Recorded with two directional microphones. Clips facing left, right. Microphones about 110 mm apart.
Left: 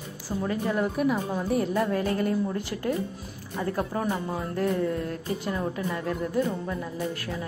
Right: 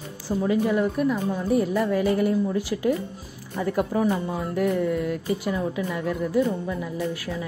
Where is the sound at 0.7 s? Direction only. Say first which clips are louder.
Right 2 dB; 5° left (ahead or behind).